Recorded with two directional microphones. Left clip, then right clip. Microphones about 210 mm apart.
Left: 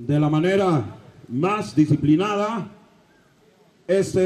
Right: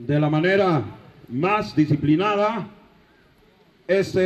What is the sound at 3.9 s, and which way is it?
Speech, 60° left (ahead or behind).